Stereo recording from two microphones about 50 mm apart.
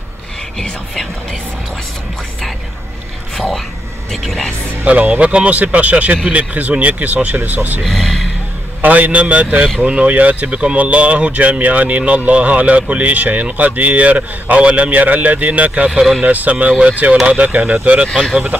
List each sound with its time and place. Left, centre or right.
0.6 s speech: centre
3.3 s speech: centre
4.8 s speech: right
7.8 s speech: centre
8.8 s speech: right
15.9 s speech: centre
16.2 s speech: right